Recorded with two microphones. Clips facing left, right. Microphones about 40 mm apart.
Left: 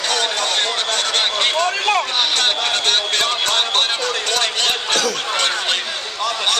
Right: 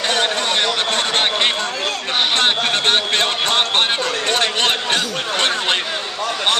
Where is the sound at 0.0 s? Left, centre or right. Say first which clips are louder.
Right 1 dB; right.